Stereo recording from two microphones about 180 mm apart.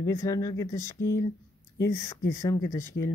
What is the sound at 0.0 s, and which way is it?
Speech, 20° left (ahead or behind).